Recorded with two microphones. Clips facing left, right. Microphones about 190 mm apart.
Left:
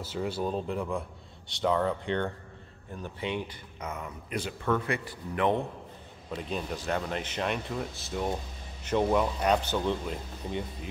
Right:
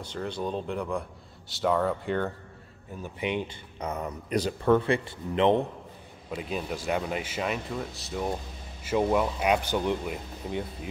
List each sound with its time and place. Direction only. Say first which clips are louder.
0.0 s speech: left 1 dB; 5° left (ahead or behind)
3.8 s a man's voice: right 5 dB; 40° right (ahead or behind); by 5.6 s 20° right (ahead or behind)
6.3 s speech: right 2 dB; 10° right (ahead or behind)